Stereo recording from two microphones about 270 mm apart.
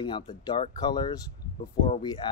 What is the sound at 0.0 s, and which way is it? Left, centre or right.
Speech, centre.